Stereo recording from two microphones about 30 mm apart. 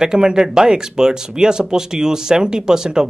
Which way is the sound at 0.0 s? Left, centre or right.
Right.